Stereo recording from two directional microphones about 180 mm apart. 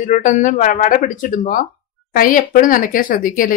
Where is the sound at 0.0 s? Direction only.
45° left (ahead or behind).